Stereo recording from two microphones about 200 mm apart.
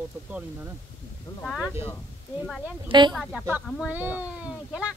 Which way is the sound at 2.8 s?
25° right (ahead or behind).